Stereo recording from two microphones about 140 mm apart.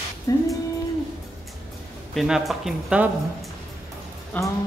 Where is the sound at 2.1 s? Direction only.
Centre (ahead or behind).